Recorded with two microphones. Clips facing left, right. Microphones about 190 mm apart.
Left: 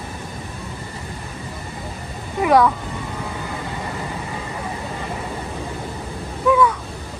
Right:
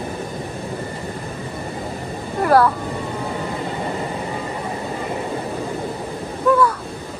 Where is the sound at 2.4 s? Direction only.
5° right (ahead or behind).